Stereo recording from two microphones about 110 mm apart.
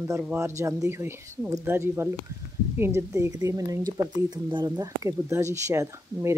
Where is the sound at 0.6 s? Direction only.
25° right (ahead or behind); by 4.6 s 40° right (ahead or behind).